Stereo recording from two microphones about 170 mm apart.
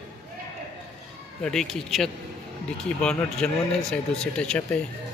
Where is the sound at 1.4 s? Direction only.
5° left (ahead or behind).